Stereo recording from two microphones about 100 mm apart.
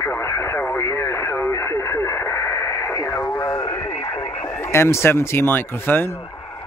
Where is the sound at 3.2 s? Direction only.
25° left (ahead or behind).